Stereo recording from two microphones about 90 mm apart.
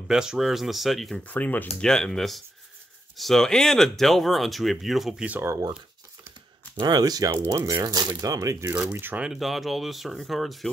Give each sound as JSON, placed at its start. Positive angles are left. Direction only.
{"t": 0.1, "sound": "speech", "side_deg": -5}
{"t": 1.2, "sound": "speech", "side_deg": 20}
{"t": 1.9, "sound": "speech", "side_deg": 5}
{"t": 5.4, "sound": "speech", "side_deg": -35}
{"t": 6.8, "sound": "speech", "side_deg": -45}
{"t": 8.9, "sound": "speech", "side_deg": -25}
{"t": 9.2, "sound": "speech", "side_deg": -5}